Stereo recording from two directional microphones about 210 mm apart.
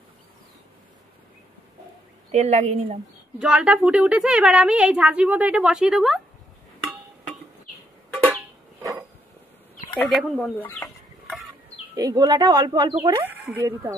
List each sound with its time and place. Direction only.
2.3 s a woman's voice: 30° right (ahead or behind)
3.3 s a woman's voice: 5° right (ahead or behind)
9.9 s a woman's voice: centre (ahead or behind)
11.9 s speech: 15° right (ahead or behind)
13.2 s speech: 10° right (ahead or behind)